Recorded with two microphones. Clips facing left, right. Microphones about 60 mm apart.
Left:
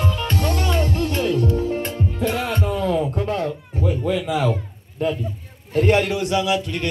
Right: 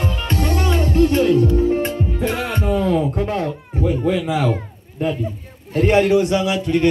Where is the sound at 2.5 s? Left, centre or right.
Centre.